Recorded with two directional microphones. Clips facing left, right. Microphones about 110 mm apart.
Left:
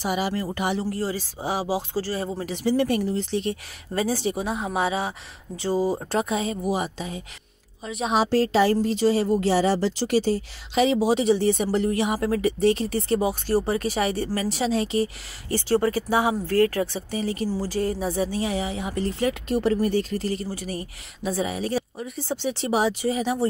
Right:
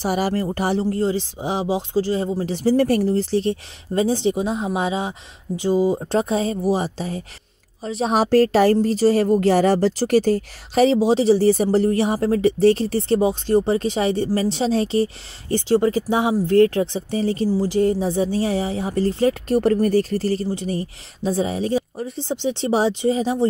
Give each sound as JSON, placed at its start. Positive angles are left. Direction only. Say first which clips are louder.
{"t": 0.0, "sound": "speech", "louder": "right 4 dB", "side_deg": -45}
{"t": 2.4, "sound": "speech", "louder": "right 4 dB", "side_deg": -35}
{"t": 6.1, "sound": "speech", "louder": "right 4 dB", "side_deg": -35}
{"t": 8.2, "sound": "a woman's voice", "louder": "right 5 dB", "side_deg": -50}
{"t": 11.0, "sound": "speech", "louder": "right 4 dB", "side_deg": -30}
{"t": 17.5, "sound": "speech", "louder": "right 7 dB", "side_deg": -20}
{"t": 20.4, "sound": "speech", "louder": "right 7 dB", "side_deg": -25}